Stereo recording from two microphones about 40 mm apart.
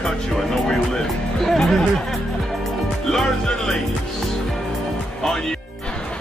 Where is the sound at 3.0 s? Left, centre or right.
Centre.